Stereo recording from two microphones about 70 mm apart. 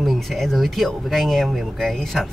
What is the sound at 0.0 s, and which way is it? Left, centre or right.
Speech, centre.